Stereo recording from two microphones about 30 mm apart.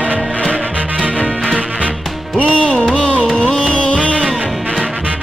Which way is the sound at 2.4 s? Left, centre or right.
Left.